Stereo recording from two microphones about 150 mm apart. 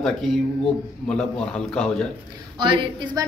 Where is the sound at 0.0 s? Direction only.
Centre (ahead or behind).